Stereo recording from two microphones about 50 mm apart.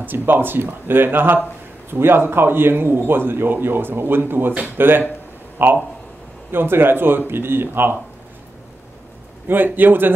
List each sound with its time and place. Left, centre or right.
0.0 s a man's voice: right
9.5 s a man's voice: right